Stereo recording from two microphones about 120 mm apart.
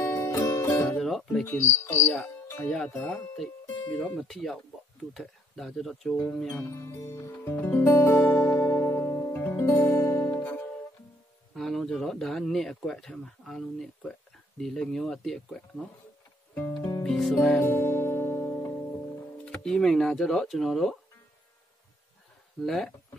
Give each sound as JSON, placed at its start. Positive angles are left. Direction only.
{"t": 0.0, "sound": "music", "side_deg": 25}
{"t": 0.8, "sound": "music", "side_deg": 5}
{"t": 1.4, "sound": "cricket", "side_deg": 20}
{"t": 2.0, "sound": "speech", "side_deg": 10}
{"t": 6.5, "sound": "music", "side_deg": 20}
{"t": 11.5, "sound": "speech", "side_deg": 0}
{"t": 16.5, "sound": "music", "side_deg": 10}
{"t": 17.6, "sound": "music", "side_deg": 20}
{"t": 19.4, "sound": "speech", "side_deg": 5}
{"t": 22.6, "sound": "speech", "side_deg": 5}